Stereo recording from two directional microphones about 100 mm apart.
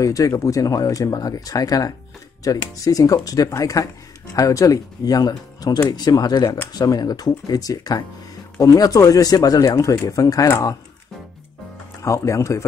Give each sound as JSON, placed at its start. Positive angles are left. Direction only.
{"t": 0.0, "sound": "speech", "side_deg": 35}
{"t": 12.0, "sound": "speech", "side_deg": 30}